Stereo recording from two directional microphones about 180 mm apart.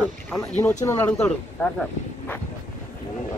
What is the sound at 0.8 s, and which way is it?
Speech, 10° left (ahead or behind).